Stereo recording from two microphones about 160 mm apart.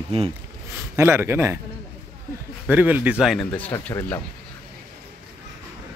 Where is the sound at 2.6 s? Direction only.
10° right (ahead or behind).